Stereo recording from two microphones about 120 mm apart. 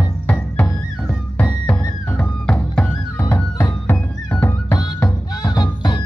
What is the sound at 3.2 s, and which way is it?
Music, 20° left (ahead or behind).